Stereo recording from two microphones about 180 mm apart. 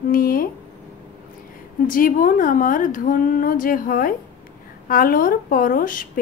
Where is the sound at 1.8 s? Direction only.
50° left (ahead or behind).